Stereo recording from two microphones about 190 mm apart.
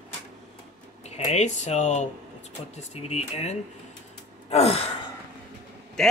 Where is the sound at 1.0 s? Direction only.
35° left (ahead or behind).